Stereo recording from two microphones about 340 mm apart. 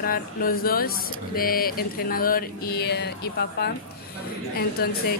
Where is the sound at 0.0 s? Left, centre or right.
Left.